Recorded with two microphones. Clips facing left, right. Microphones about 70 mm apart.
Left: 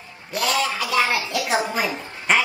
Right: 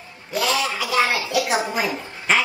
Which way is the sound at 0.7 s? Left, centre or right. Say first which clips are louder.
Right 1 dB; right.